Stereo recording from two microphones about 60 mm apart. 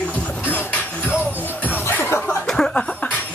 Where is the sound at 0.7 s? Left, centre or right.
Left.